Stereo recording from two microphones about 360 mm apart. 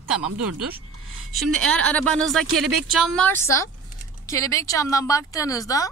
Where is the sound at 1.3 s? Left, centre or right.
Centre.